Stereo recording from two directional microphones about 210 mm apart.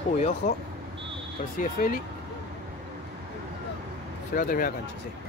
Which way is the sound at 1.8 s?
45° left (ahead or behind).